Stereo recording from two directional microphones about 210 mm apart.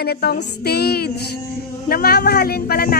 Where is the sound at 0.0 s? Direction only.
50° left (ahead or behind).